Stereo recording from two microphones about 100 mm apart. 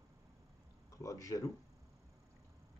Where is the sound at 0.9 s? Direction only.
35° left (ahead or behind).